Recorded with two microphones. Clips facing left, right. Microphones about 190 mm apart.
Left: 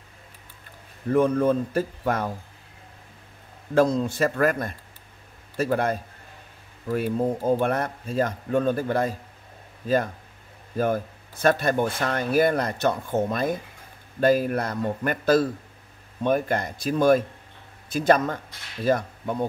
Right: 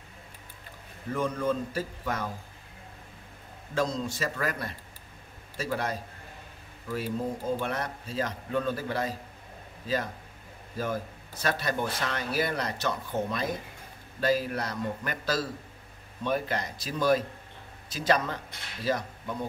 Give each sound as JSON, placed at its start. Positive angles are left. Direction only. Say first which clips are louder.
{"t": 1.1, "sound": "a man's voice", "louder": "left 9 dB", "side_deg": 60}
{"t": 3.7, "sound": "a man's voice", "louder": "left 9 dB", "side_deg": 55}
{"t": 10.8, "sound": "speech", "louder": "left 8 dB", "side_deg": 55}